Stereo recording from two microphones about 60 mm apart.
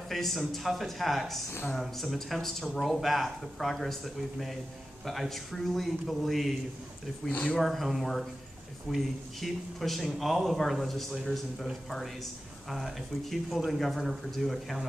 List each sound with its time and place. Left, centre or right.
0.1 s speech: centre
7.2 s speech: left
7.5 s speech: centre
12.6 s speech: centre